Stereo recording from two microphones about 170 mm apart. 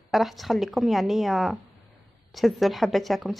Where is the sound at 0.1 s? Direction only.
Centre (ahead or behind).